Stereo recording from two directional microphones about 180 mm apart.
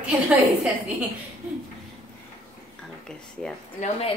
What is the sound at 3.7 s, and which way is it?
Speech, 40° left (ahead or behind).